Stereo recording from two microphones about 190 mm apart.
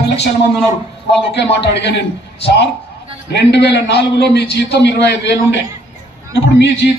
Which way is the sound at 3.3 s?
60° left (ahead or behind).